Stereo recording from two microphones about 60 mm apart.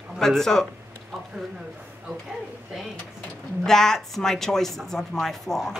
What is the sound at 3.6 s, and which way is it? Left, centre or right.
Speech, centre.